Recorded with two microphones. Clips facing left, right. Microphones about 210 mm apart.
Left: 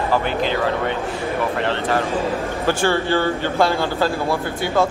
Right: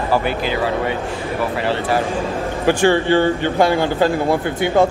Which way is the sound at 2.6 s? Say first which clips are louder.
Right 5 dB; 15° right (ahead or behind).